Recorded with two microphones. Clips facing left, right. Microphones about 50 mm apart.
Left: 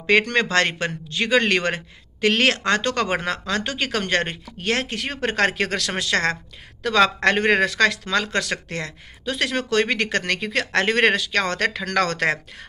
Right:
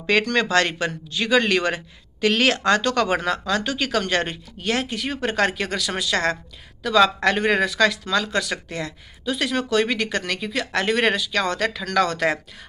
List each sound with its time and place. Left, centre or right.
0.0 s speech: left